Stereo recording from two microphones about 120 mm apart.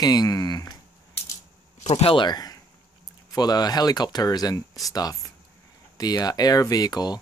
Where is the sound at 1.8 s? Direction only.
60° left (ahead or behind).